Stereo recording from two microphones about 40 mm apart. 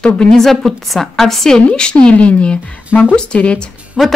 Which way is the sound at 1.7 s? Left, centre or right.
Left.